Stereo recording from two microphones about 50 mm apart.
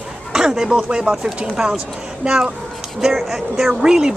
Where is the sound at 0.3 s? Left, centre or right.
Centre.